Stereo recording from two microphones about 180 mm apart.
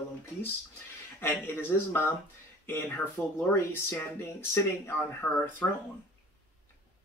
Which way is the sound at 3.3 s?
15° left (ahead or behind).